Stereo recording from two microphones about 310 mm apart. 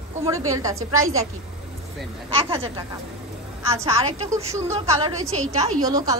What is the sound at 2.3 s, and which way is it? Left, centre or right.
A woman's voice, centre.